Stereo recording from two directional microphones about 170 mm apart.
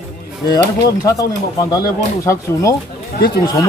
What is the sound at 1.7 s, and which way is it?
Speech, 20° left (ahead or behind).